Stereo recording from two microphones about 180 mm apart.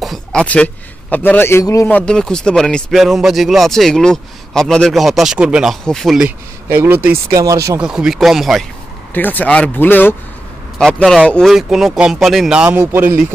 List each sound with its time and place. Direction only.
0.0 s a sound: centre (ahead or behind)
1.1 s a man's voice: 10° left (ahead or behind); by 7.0 s 10° right (ahead or behind)
7.0 s speech: 55° right (ahead or behind)
7.3 s speech: 20° right (ahead or behind)
7.8 s a man's voice: 5° right (ahead or behind)
9.1 s a man's voice: 10° left (ahead or behind); by 13.1 s 10° right (ahead or behind)